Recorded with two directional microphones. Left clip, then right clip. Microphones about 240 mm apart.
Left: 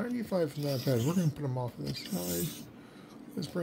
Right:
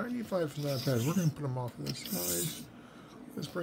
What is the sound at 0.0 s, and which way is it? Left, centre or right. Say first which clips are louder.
Speech: left 2 dB; centre.